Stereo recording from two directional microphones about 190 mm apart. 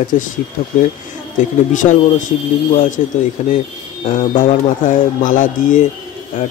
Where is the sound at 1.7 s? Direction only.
40° left (ahead or behind).